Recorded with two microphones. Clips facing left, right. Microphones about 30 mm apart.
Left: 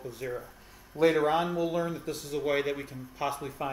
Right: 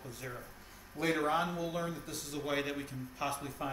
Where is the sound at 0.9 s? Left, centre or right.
Right.